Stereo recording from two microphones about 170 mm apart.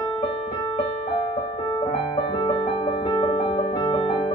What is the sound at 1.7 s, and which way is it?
Music, 25° left (ahead or behind).